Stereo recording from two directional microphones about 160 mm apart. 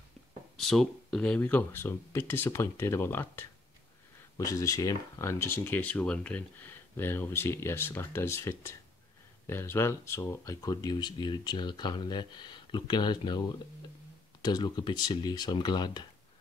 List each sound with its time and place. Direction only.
0.6 s speech: centre (ahead or behind); by 16.1 s 25° left (ahead or behind)